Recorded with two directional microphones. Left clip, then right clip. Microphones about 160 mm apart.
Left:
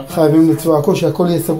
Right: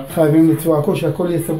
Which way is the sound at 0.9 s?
30° left (ahead or behind).